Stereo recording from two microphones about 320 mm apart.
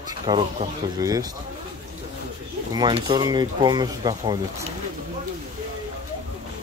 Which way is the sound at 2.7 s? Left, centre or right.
Centre.